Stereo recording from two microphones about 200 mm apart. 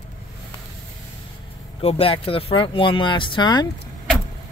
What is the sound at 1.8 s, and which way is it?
Speech, 30° left (ahead or behind).